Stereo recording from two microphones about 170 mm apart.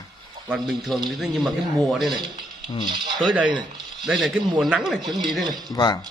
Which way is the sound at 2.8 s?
25° right (ahead or behind).